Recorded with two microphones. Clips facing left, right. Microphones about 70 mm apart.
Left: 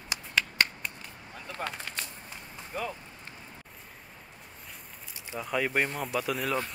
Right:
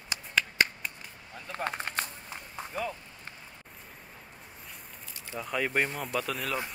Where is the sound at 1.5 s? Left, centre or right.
Right.